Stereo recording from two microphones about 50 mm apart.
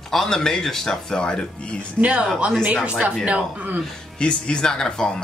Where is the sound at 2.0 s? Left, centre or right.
Right.